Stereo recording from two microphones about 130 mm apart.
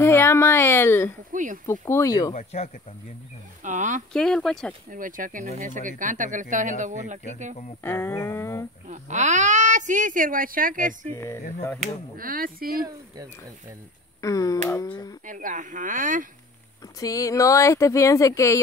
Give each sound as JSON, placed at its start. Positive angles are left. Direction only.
{"t": 0.0, "sound": "a woman's voice", "side_deg": 20}
{"t": 1.3, "sound": "speech", "side_deg": -90}
{"t": 1.7, "sound": "speech", "side_deg": 20}
{"t": 2.3, "sound": "speech", "side_deg": 55}
{"t": 3.6, "sound": "a woman's voice", "side_deg": -70}
{"t": 4.1, "sound": "speech", "side_deg": 5}
{"t": 4.8, "sound": "speech", "side_deg": -90}
{"t": 7.8, "sound": "speech", "side_deg": 20}
{"t": 8.8, "sound": "a woman's voice", "side_deg": -70}
{"t": 11.1, "sound": "speech", "side_deg": 20}
{"t": 11.8, "sound": "speech", "side_deg": -90}
{"t": 14.2, "sound": "speech", "side_deg": 25}
{"t": 15.2, "sound": "speech", "side_deg": -80}
{"t": 17.0, "sound": "speech", "side_deg": 25}